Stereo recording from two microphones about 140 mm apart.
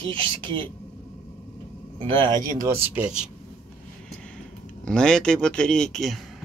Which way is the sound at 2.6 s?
15° right (ahead or behind).